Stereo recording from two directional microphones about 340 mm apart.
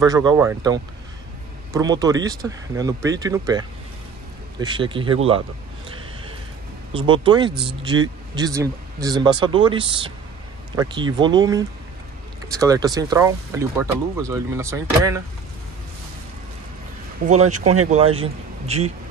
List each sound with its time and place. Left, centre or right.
0.0 s speech: centre
6.9 s speech: centre
17.3 s speech: right